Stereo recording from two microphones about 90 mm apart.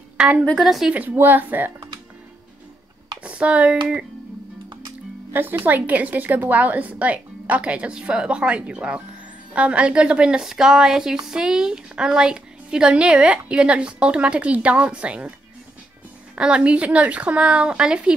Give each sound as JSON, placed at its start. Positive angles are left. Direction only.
{"t": 0.2, "sound": "a woman's voice", "side_deg": -10}
{"t": 0.9, "sound": "a woman's voice", "side_deg": -20}
{"t": 3.3, "sound": "speech", "side_deg": -15}
{"t": 5.3, "sound": "a woman's voice", "side_deg": -20}
{"t": 16.3, "sound": "a woman's voice", "side_deg": -10}